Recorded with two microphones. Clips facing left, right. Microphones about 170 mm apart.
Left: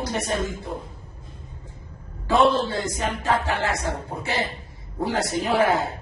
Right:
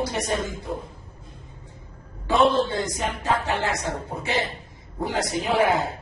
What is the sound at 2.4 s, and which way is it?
A man's voice, 20° right (ahead or behind).